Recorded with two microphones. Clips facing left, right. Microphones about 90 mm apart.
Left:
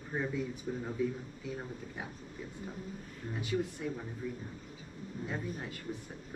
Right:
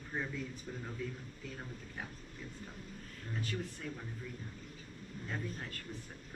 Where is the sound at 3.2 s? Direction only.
15° left (ahead or behind).